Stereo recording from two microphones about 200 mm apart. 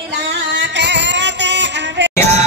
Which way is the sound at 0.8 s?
60° right (ahead or behind).